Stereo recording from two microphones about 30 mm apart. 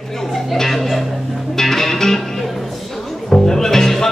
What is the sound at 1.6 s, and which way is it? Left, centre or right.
Music, centre.